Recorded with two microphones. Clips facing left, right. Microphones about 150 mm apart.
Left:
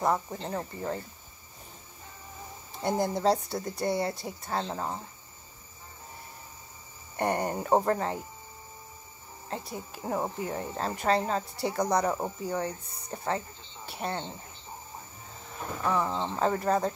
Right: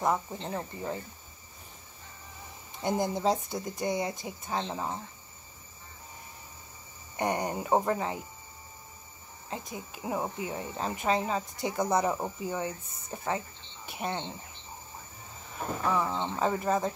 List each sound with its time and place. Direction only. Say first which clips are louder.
0.0 s speech: left 1 dB; centre (ahead or behind)
3.0 s speech: left 3 dB; 15° right (ahead or behind)
4.6 s speech: left 1 dB; 5° left (ahead or behind)
7.2 s speech: left 1 dB; 15° right (ahead or behind)
9.5 s speech: left 2 dB; 5° right (ahead or behind)
15.9 s speech: left 2 dB; centre (ahead or behind)